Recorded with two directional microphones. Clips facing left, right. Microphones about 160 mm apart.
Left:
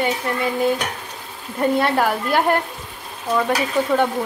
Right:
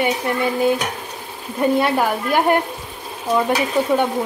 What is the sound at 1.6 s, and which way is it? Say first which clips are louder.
Speech: right 1 dB; 5° right (ahead or behind).